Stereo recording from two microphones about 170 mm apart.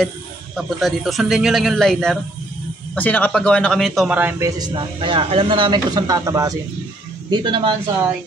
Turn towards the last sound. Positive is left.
turn(degrees=-25)  # may be behind; listen again after turning